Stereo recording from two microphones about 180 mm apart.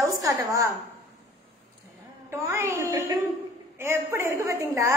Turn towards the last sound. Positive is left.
turn(degrees=-15)  # may be behind; listen again after turning